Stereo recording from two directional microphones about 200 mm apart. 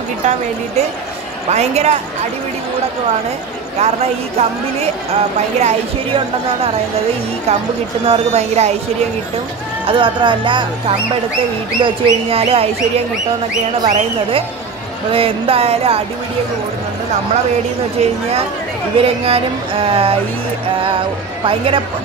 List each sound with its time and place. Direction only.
1.5 s a woman's voice: 35° right (ahead or behind)
3.8 s a woman's voice: 30° right (ahead or behind)
5.6 s a woman's voice: 30° right (ahead or behind)
8.1 s a woman's voice: 35° right (ahead or behind)
9.8 s a woman's voice: 25° right (ahead or behind)
18.9 s speech: 30° right (ahead or behind)
21.5 s speech: 25° right (ahead or behind)